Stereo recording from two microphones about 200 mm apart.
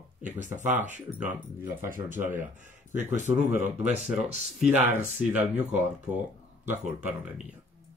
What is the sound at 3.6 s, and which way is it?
Speech, 35° right (ahead or behind).